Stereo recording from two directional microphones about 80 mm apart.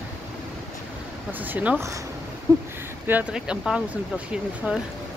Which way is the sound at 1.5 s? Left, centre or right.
Centre.